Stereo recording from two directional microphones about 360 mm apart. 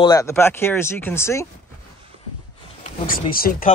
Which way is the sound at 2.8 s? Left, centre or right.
Left.